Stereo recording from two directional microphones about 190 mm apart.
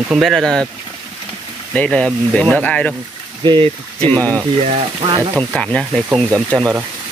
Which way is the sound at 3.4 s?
25° right (ahead or behind).